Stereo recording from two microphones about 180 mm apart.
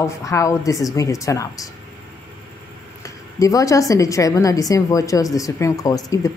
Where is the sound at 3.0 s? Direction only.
20° left (ahead or behind).